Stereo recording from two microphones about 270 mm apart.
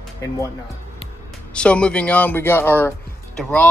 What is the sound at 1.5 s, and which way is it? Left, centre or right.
Speech, centre.